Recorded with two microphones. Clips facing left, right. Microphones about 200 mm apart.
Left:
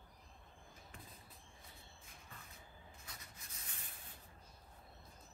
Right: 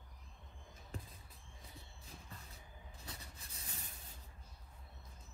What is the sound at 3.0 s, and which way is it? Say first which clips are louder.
Rub: right 4 dB; 30° right (ahead or behind).